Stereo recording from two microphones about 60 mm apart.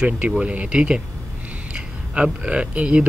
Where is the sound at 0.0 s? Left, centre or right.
Centre.